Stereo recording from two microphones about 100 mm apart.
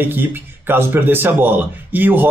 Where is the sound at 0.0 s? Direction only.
20° right (ahead or behind).